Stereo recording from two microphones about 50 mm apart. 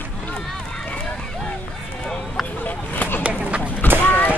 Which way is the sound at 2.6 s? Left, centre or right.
Left.